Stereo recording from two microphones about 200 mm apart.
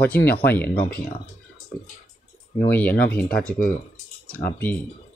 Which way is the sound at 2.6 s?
10° left (ahead or behind).